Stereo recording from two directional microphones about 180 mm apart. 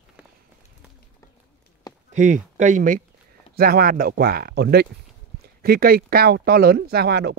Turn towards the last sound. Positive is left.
turn(degrees=-65)  # may be behind; listen again after turning